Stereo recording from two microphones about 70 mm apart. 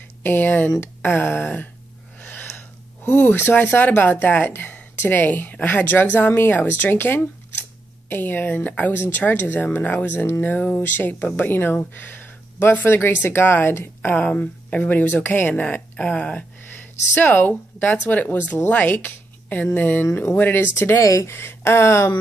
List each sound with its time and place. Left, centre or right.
0.2 s speech: left
2.1 s a sound: left
3.3 s speech: left
14.1 s speech: left
21.0 s speech: left